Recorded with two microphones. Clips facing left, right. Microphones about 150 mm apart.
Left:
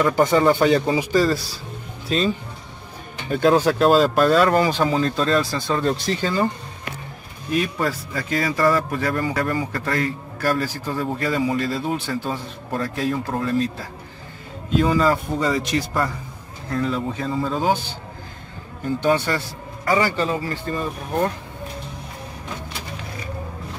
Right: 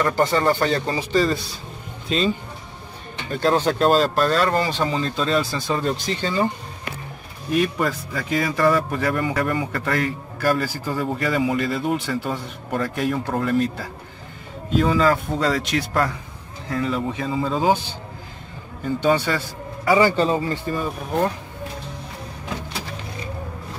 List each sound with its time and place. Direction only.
0.0 s speech: 15° left (ahead or behind)
7.5 s speech: centre (ahead or behind)
14.7 s speech: centre (ahead or behind)
16.6 s speech: centre (ahead or behind)
19.0 s a man's voice: 5° right (ahead or behind)
20.2 s speech: 25° right (ahead or behind)
20.6 s speech: centre (ahead or behind)